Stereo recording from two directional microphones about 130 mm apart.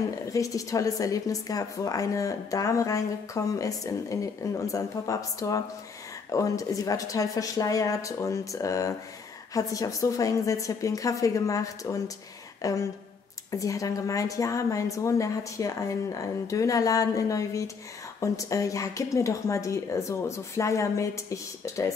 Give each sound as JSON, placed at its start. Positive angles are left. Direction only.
{"t": 0.3, "sound": "a woman's voice", "side_deg": 25}